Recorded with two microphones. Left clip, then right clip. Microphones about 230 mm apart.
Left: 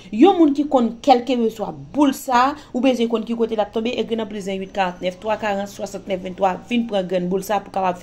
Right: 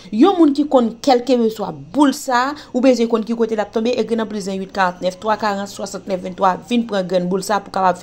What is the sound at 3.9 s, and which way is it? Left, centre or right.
Speech, right.